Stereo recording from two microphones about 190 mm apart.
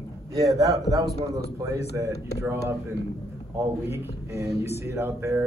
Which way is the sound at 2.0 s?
10° right (ahead or behind).